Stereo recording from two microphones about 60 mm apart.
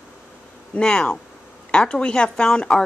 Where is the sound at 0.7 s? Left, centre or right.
Centre.